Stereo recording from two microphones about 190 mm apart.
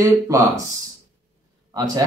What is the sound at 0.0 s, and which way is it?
Speech, 15° right (ahead or behind).